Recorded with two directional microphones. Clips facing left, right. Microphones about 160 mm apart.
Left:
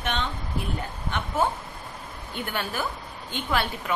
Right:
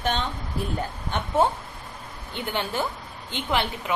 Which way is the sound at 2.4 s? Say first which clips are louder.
Right 3 dB; 20° right (ahead or behind).